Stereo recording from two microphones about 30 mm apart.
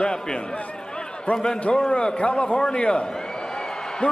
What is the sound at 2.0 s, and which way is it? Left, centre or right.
Speech, left.